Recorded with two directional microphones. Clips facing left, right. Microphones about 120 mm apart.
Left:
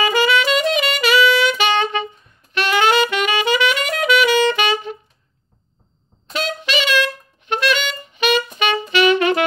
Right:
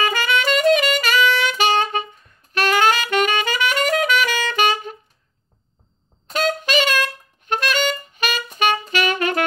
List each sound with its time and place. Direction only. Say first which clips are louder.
0.0 s saxophone: left 4 dB; 45° right (ahead or behind)
6.2 s music: right 3 dB; 45° right (ahead or behind)
8.9 s saxophone: left 5 dB; 45° right (ahead or behind)